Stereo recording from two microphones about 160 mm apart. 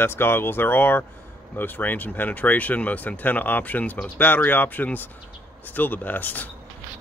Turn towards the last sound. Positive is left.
turn(degrees=10)  # may be behind; listen again after turning